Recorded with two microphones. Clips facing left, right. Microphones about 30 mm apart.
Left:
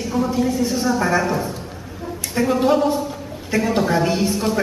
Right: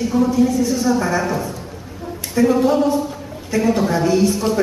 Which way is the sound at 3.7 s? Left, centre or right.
Centre.